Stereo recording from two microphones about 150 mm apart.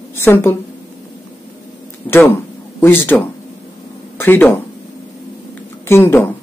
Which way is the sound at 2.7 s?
15° left (ahead or behind).